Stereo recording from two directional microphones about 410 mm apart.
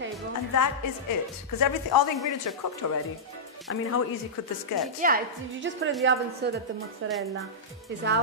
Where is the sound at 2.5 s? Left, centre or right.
Left.